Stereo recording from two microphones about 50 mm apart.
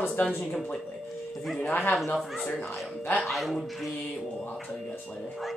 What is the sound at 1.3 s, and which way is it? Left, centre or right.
Speech, centre.